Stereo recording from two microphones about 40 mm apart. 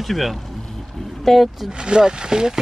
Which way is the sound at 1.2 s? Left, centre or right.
Centre.